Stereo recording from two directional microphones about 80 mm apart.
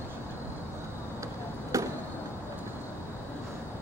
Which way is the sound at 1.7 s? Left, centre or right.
Right.